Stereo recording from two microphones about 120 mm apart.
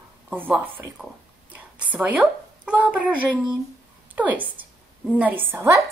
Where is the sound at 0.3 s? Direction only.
15° right (ahead or behind).